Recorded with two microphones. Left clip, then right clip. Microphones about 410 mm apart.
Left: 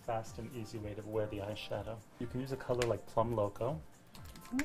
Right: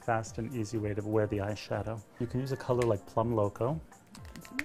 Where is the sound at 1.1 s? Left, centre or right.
Right.